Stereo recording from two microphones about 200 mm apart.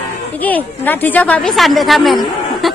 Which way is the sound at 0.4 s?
10° left (ahead or behind).